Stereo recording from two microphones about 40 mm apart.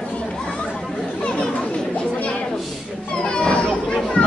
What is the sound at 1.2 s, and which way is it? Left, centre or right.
Chatter, left.